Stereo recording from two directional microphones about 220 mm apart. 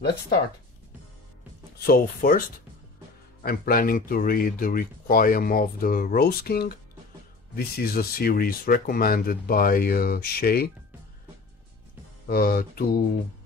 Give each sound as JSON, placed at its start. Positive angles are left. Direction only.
{"t": 1.9, "sound": "speech", "side_deg": 40}
{"t": 3.4, "sound": "speech", "side_deg": 45}
{"t": 12.3, "sound": "speech", "side_deg": 40}